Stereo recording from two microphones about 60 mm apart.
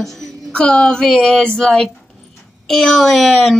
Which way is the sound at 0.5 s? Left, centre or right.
Centre.